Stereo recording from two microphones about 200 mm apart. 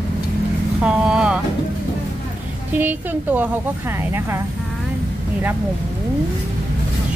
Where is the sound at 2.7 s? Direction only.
10° right (ahead or behind).